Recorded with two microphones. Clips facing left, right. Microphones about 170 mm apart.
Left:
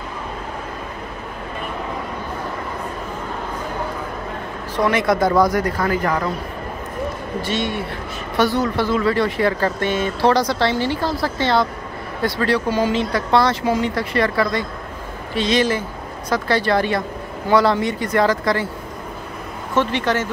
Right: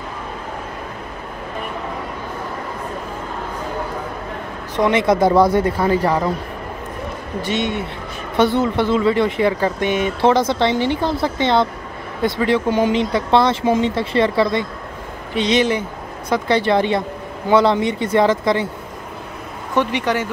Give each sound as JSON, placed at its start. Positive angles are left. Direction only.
{"t": 4.7, "sound": "speech", "side_deg": -20}
{"t": 7.4, "sound": "speech", "side_deg": -20}
{"t": 19.7, "sound": "speech", "side_deg": -15}